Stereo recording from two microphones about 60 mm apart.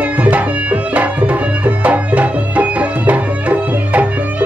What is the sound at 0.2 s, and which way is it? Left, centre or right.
Music, right.